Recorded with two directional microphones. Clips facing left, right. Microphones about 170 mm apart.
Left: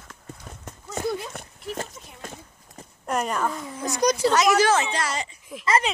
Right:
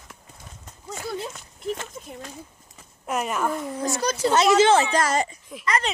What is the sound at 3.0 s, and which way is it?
Speech, 5° right (ahead or behind).